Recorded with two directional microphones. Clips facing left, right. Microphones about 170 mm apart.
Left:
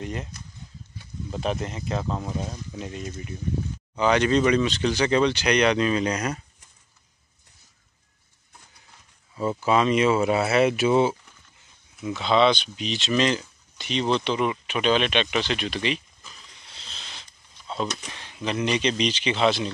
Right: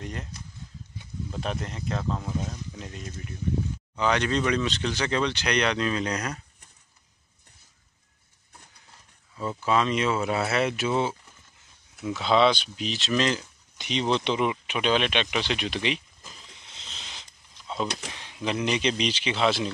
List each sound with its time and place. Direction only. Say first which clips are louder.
0.0 s speech: left 4 dB; 5° left (ahead or behind)
1.3 s speech: left 5 dB; 5° left (ahead or behind)
9.3 s speech: left 3 dB; 15° left (ahead or behind)
12.0 s speech: left 1 dB; 5° right (ahead or behind)
13.7 s speech: left 2 dB; 15° right (ahead or behind)
16.7 s a sound: left 1 dB; 20° right (ahead or behind)
18.1 s speech: left 1 dB; 5° right (ahead or behind)